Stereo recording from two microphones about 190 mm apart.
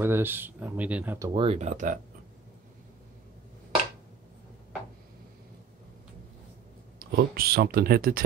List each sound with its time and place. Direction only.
0.0 s speech: 10° right (ahead or behind)
1.3 s speech: 30° right (ahead or behind)
7.0 s speech: 55° right (ahead or behind)